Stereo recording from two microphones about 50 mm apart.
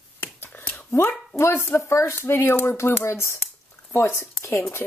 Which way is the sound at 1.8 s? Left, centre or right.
Left.